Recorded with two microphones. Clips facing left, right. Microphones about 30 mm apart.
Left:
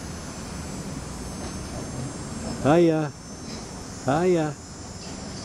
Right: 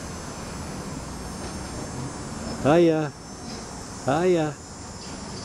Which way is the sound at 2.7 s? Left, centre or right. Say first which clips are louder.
Right 1 dB; right.